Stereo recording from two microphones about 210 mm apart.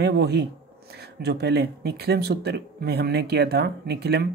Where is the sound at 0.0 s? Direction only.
50° right (ahead or behind).